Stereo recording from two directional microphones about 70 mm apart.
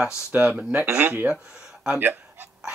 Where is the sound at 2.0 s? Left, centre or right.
Right.